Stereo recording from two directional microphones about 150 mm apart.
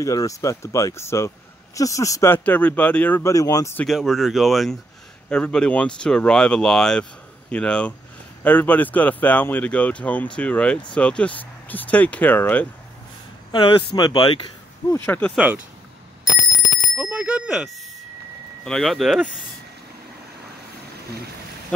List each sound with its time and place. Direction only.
0.0 s speech: 20° left (ahead or behind)
3.8 s speech: centre (ahead or behind)
13.5 s speech: 35° left (ahead or behind)
15.0 s speech: 10° left (ahead or behind)
15.3 s speech: 10° right (ahead or behind)
16.9 s bicycle bell: 10° right (ahead or behind)
18.6 s speech: centre (ahead or behind)